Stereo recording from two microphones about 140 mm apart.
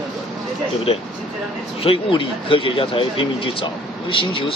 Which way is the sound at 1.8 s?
40° left (ahead or behind).